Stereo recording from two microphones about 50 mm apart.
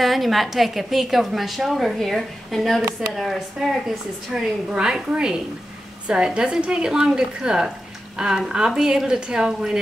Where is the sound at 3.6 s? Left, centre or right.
Centre.